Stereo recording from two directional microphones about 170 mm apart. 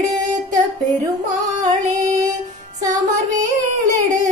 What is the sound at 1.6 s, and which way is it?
Music, 50° right (ahead or behind).